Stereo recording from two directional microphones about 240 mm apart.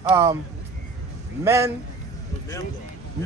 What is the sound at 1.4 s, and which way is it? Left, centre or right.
Speech, centre.